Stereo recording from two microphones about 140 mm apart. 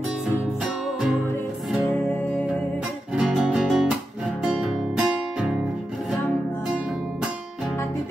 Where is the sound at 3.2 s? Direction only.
Centre (ahead or behind).